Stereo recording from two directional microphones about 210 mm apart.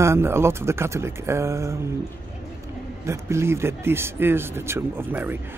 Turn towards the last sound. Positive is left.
turn(degrees=-10)  # may be behind; listen again after turning